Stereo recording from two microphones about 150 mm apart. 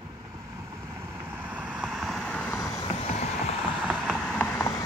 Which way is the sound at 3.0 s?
45° left (ahead or behind).